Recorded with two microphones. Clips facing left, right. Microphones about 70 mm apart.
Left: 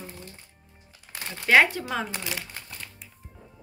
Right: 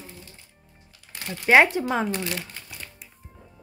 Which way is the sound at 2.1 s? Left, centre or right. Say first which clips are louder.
Right 5 dB; centre.